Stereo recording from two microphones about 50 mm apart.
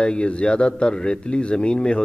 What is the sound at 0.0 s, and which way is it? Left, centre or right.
A man's voice, left.